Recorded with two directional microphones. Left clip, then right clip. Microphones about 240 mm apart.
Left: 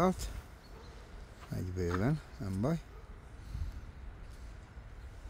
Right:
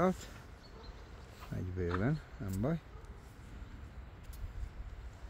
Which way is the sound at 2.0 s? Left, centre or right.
Centre.